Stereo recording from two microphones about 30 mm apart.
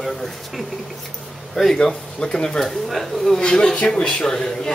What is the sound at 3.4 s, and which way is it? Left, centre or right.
A man's voice, left.